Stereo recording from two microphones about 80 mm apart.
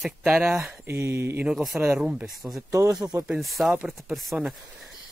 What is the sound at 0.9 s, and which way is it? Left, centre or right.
Speech, right.